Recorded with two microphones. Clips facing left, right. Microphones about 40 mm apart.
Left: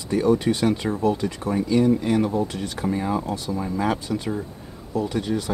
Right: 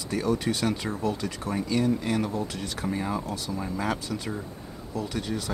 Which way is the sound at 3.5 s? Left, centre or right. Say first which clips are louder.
Left 5 dB; centre.